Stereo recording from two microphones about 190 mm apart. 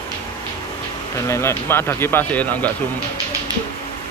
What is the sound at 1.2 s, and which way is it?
A man's voice, 15° left (ahead or behind).